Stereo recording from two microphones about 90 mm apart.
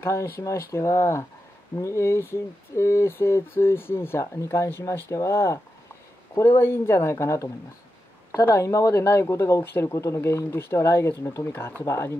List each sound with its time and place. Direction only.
0.0 s speech: 30° left (ahead or behind)